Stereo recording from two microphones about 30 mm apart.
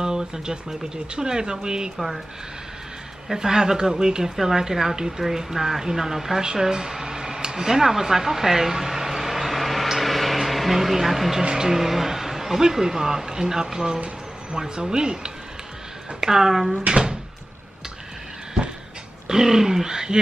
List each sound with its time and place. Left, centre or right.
0.0 s speech: right
3.3 s speech: centre
6.4 s a sound: right; by 11.3 s centre
11.5 s speech: centre
16.9 s cupboard open or close: right
19.2 s speech: centre